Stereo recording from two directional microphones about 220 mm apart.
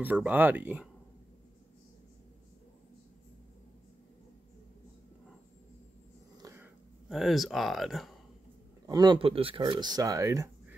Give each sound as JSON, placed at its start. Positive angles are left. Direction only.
{"t": 0.0, "sound": "speech", "side_deg": -5}
{"t": 7.1, "sound": "speech", "side_deg": 0}
{"t": 8.8, "sound": "speech", "side_deg": -15}